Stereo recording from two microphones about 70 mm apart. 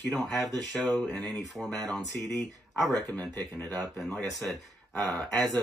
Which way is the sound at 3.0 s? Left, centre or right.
Left.